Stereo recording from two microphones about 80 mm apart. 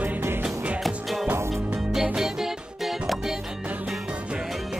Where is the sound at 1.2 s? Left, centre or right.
Right.